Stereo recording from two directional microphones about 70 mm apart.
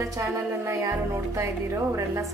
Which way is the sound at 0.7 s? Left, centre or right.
Right.